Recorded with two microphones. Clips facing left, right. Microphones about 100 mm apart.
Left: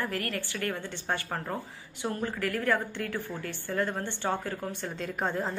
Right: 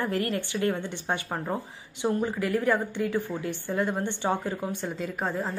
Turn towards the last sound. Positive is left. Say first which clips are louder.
# right 1 dB
turn(degrees=0)  # may be behind; listen again after turning